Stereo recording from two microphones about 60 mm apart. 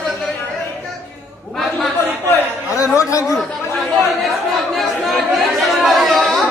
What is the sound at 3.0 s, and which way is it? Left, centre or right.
Speech, left.